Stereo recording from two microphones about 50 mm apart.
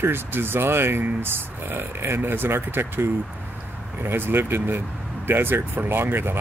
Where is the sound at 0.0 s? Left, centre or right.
Right.